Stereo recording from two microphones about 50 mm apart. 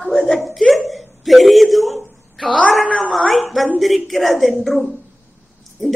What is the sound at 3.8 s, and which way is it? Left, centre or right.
A woman's voice, centre.